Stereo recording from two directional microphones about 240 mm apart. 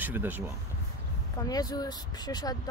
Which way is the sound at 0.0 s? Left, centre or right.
Centre.